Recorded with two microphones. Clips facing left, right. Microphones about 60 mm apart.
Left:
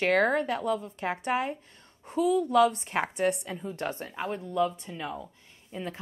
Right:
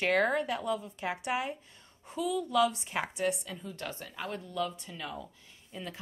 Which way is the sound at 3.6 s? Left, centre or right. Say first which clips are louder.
Left 8 dB; left.